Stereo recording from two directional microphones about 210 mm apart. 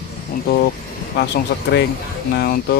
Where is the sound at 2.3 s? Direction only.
50° left (ahead or behind).